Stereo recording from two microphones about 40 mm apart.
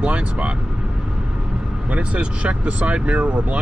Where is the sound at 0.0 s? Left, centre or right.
Right.